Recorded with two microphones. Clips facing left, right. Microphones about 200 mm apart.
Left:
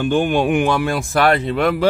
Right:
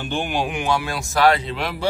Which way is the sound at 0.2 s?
55° left (ahead or behind).